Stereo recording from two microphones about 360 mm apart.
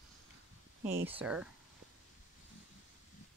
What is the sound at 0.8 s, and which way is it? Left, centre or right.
Speech, centre.